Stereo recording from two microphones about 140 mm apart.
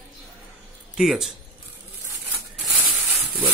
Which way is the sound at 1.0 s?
5° right (ahead or behind).